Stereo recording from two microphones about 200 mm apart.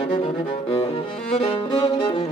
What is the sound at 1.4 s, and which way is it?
Music, 25° left (ahead or behind).